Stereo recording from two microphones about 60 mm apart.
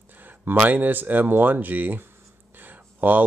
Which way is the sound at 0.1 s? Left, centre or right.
Right.